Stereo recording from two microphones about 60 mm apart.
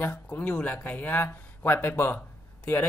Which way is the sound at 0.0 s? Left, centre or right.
Left.